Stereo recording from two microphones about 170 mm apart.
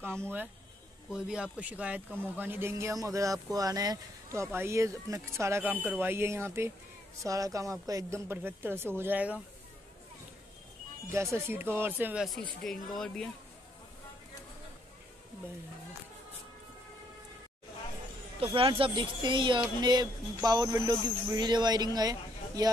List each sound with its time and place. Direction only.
0.0 s speech: 15° right (ahead or behind)
11.1 s speech: 10° right (ahead or behind); by 13.3 s 5° left (ahead or behind)
18.4 s speech: 30° right (ahead or behind)